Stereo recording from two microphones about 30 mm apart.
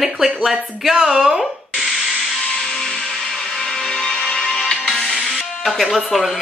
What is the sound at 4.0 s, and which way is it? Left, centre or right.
Music, left.